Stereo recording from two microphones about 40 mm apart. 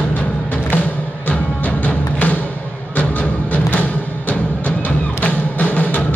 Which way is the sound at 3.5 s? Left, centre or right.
Left.